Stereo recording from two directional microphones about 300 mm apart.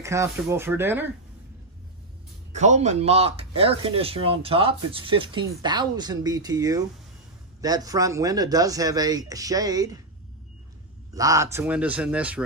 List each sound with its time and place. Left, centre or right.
0.0 s speech: centre
2.5 s speech: right
11.1 s speech: centre